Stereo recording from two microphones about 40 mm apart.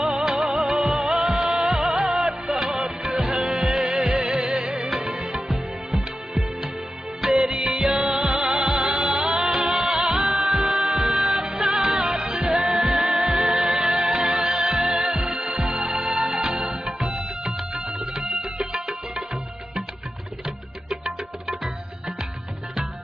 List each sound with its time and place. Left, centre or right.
0.2 s music: centre
1.1 s music of bollywood: centre
2.4 s music: centre
2.7 s music: centre
7.2 s music of bollywood: centre
7.7 s music: centre
10.7 s music: centre
15.0 s music: right
20.4 s music: centre